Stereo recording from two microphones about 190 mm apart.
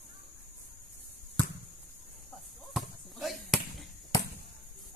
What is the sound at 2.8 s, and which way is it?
Basketball bounce, centre (ahead or behind).